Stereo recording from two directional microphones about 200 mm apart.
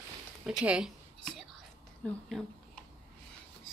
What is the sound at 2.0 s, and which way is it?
Speech, 5° left (ahead or behind).